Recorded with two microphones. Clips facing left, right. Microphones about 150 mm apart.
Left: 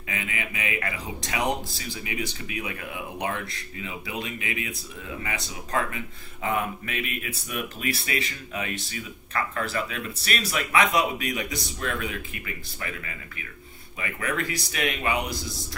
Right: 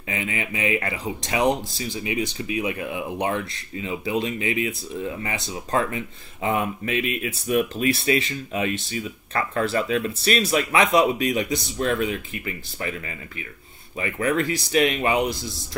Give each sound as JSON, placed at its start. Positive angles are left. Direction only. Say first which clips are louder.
{"t": 0.1, "sound": "speech", "louder": "right 5 dB", "side_deg": -30}
{"t": 3.8, "sound": "speech", "louder": "right 9 dB", "side_deg": -30}
{"t": 13.9, "sound": "speech", "louder": "right 7 dB", "side_deg": -30}